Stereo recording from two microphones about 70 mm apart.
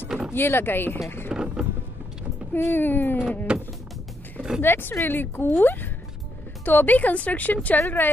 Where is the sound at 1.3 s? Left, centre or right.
Centre.